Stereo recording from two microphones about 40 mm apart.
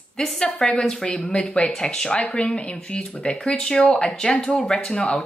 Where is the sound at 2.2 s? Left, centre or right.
Left; by 5.0 s centre.